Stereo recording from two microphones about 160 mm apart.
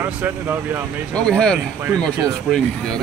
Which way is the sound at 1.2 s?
5° left (ahead or behind).